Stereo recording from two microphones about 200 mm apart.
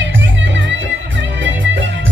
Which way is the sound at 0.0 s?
65° right (ahead or behind).